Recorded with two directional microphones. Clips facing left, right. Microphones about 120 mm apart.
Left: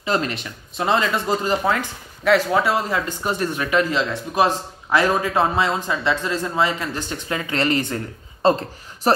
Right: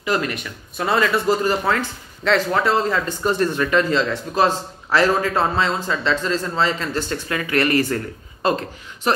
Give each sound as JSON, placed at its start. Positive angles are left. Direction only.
{"t": 0.0, "sound": "speech", "side_deg": 30}